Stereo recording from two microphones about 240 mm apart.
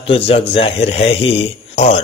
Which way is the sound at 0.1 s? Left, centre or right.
Left.